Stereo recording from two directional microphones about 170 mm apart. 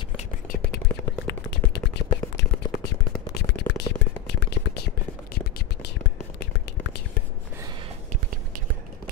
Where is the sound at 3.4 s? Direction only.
75° left (ahead or behind).